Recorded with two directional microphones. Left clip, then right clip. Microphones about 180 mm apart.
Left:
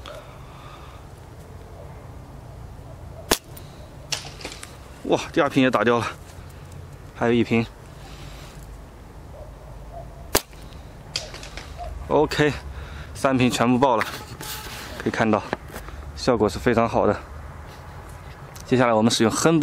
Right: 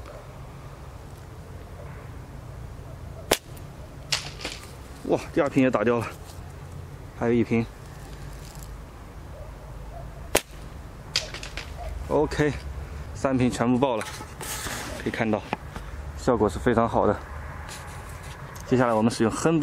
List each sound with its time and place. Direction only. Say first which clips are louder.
4.1 s typewriter: right 2 dB; centre (ahead or behind)
5.1 s speech: left 3 dB; 30° left (ahead or behind)
7.2 s speech: left 3 dB; 30° left (ahead or behind)
11.1 s a sound: right 2 dB; centre (ahead or behind)
12.1 s speech: left 4 dB; 30° left (ahead or behind)
15.0 s speech: left 6 dB; 25° left (ahead or behind)
16.3 s speech: left 2 dB; 15° left (ahead or behind)
18.7 s speech: left 4 dB; 15° left (ahead or behind)